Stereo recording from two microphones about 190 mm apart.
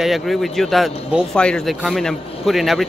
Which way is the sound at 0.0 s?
Centre (ahead or behind).